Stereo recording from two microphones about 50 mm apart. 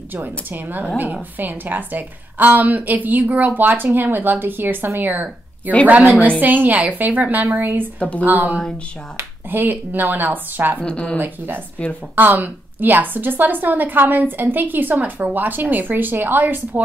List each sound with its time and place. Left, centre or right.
0.1 s a woman's voice: right
10.8 s speech: centre
11.1 s a woman's voice: right